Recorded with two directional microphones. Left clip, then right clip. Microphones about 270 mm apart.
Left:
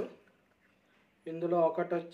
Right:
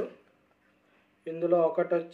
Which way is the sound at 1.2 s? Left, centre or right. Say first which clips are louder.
Right 4 dB; centre.